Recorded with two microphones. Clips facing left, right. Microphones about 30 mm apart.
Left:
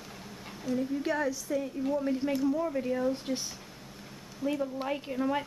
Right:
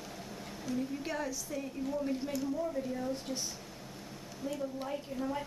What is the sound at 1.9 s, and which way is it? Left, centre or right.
Speech, left.